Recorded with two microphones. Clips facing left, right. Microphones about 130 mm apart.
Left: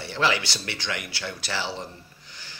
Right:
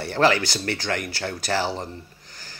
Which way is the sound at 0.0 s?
50° right (ahead or behind).